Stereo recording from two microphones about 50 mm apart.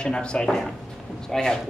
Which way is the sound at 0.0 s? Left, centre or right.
Centre.